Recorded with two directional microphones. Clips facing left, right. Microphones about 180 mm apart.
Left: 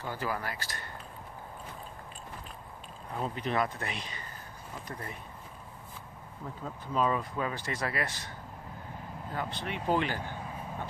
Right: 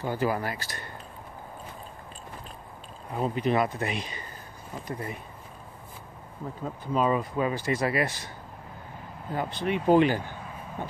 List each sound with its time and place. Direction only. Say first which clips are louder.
0.0 s speech: right 7 dB; 15° right (ahead or behind)
3.1 s speech: right 7 dB; 10° right (ahead or behind)
6.6 s speech: right 4 dB; 10° right (ahead or behind)
9.3 s speech: right 8 dB; 15° right (ahead or behind)